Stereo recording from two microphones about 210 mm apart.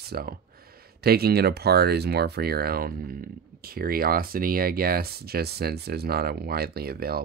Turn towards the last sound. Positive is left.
turn(degrees=-45)  # may be behind; listen again after turning